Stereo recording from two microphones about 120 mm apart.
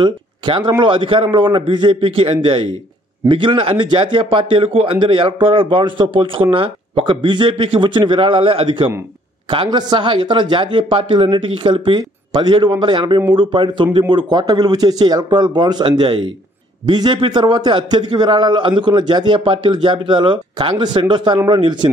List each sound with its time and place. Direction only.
0.0 s a man's voice: 40° right (ahead or behind)